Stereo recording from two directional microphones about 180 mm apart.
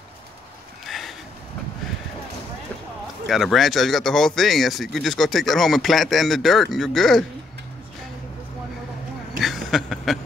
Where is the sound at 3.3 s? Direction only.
Centre (ahead or behind).